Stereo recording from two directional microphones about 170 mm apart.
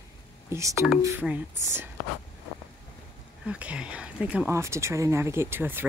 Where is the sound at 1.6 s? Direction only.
15° right (ahead or behind).